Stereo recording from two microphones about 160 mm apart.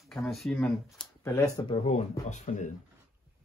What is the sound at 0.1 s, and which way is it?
Speech, centre (ahead or behind).